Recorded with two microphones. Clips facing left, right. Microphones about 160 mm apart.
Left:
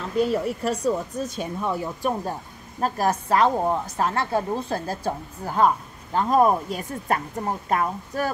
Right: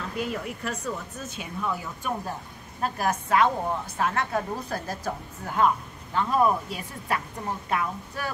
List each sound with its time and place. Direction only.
0.2 s a woman's voice: 35° left (ahead or behind)